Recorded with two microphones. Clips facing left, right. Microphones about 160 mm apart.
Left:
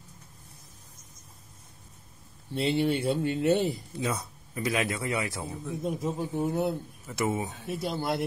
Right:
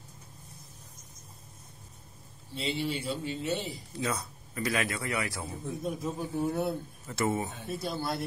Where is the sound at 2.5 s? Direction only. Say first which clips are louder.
Left 7 dB; 60° left (ahead or behind).